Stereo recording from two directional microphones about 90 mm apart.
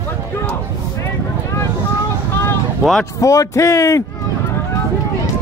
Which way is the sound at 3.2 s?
35° left (ahead or behind).